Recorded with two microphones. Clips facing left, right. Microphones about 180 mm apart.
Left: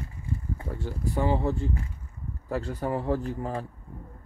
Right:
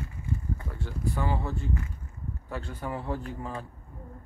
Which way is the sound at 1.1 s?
25° left (ahead or behind).